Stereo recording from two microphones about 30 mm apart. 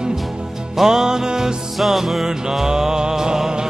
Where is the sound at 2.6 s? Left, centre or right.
Right.